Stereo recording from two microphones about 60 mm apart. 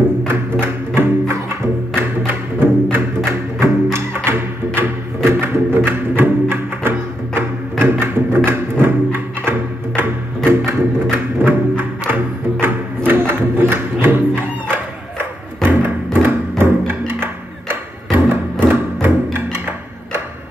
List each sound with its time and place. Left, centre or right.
0.3 s music: right
3.3 s music: right
11.1 s music: right